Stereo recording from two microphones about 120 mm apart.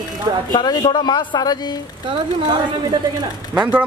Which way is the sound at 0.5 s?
35° left (ahead or behind).